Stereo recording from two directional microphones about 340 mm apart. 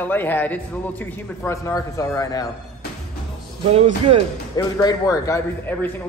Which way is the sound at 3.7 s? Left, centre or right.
Centre.